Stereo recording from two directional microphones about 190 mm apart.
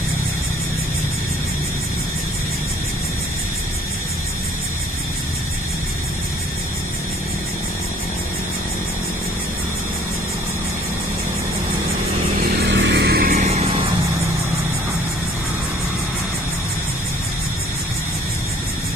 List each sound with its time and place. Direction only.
12.6 s vehicle: 70° right (ahead or behind); by 13.5 s 50° right (ahead or behind)